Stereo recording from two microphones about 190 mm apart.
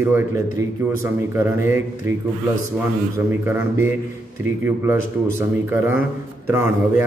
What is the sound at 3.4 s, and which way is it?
Speech, 10° right (ahead or behind).